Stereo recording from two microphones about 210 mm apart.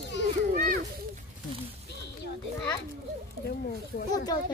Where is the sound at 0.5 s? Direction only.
45° right (ahead or behind).